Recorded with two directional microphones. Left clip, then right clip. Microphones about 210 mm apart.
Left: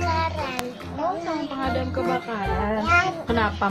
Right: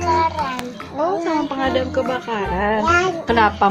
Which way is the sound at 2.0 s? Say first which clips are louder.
Right 3 dB; 45° right (ahead or behind).